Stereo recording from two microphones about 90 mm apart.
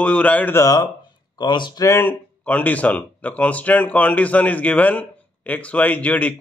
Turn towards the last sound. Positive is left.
turn(degrees=15)  # may be behind; listen again after turning